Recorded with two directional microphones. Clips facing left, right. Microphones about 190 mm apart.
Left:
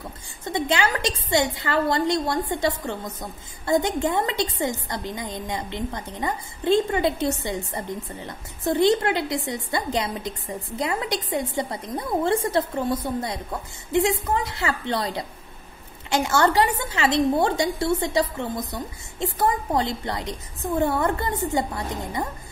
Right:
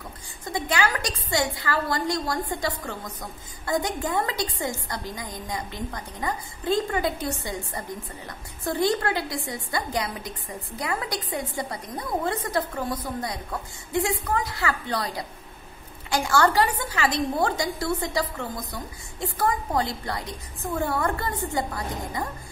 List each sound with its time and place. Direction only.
0.5 s a woman's voice: 25° left (ahead or behind)